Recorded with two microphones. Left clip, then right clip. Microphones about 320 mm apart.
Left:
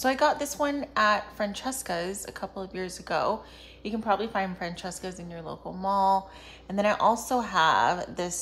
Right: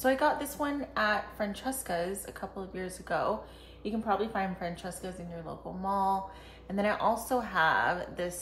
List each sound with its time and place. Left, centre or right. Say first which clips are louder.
0.0 s a woman's voice: left 3 dB; centre